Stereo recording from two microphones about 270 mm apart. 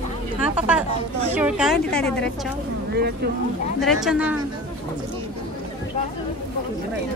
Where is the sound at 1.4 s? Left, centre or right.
Centre.